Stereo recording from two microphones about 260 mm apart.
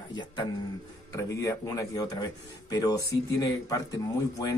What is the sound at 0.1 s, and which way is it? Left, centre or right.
Speech, centre.